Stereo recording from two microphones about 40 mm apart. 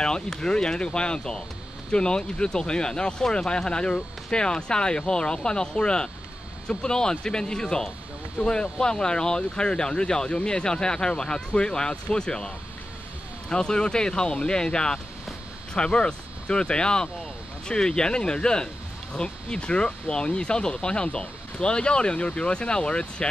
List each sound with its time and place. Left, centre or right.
0.0 s speech: centre